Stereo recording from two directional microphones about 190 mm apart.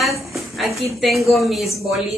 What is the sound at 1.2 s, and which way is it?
Speech, centre (ahead or behind).